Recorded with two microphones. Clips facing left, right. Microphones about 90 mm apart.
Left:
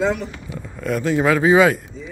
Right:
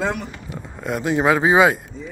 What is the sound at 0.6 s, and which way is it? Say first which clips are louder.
Speech: left 2 dB; 20° right (ahead or behind).